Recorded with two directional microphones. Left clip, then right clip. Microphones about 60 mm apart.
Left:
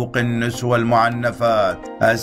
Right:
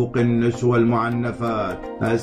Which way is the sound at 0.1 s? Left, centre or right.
Left.